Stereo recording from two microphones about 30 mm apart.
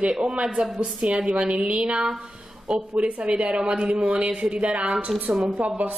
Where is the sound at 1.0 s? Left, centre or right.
Right.